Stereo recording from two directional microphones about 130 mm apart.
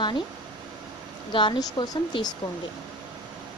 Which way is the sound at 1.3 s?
35° left (ahead or behind).